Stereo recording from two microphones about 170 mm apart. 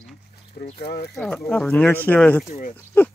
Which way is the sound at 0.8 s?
70° left (ahead or behind).